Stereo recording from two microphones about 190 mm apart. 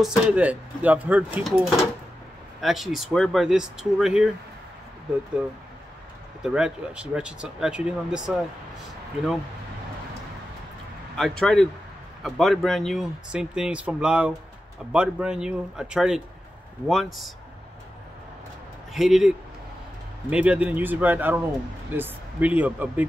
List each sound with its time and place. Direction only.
0.0 s speech: 5° right (ahead or behind)
6.4 s speech: 5° right (ahead or behind)
11.1 s speech: 5° left (ahead or behind)
18.9 s speech: centre (ahead or behind)